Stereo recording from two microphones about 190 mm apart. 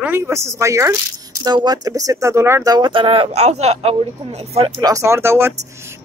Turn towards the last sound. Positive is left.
turn(degrees=-15)  # may be behind; listen again after turning